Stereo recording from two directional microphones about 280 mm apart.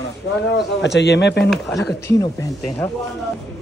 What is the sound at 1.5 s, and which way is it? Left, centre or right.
Speech, centre.